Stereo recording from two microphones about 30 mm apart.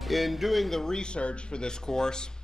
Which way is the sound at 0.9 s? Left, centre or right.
Left.